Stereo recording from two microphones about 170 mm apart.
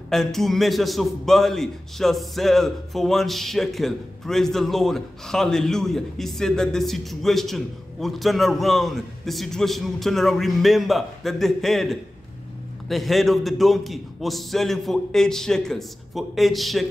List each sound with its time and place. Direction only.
0.1 s a man's voice: centre (ahead or behind)